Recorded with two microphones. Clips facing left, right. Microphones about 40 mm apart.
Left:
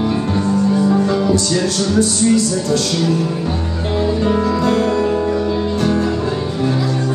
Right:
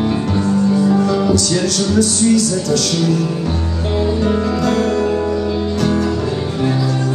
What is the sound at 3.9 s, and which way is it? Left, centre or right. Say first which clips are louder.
Music: even; centre.